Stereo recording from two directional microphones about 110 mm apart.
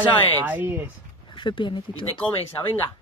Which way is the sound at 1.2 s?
50° left (ahead or behind).